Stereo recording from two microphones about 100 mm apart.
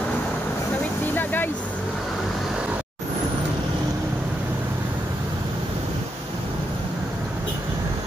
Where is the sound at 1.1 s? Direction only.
20° left (ahead or behind).